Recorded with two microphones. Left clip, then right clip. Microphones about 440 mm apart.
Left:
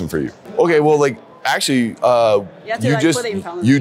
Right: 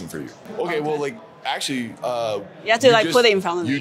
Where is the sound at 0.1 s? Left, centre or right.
Left.